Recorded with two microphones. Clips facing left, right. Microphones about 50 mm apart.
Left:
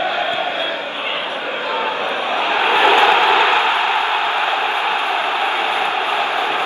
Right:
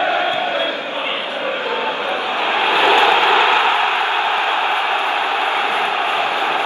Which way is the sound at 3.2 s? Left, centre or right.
Right.